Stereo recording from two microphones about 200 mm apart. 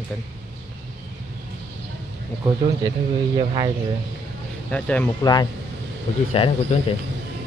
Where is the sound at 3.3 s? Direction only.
25° right (ahead or behind).